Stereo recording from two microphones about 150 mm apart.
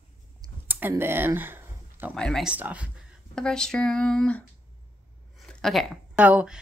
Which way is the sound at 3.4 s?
5° left (ahead or behind).